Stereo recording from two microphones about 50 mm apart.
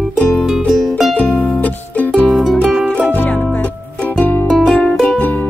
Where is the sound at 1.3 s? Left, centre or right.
Left.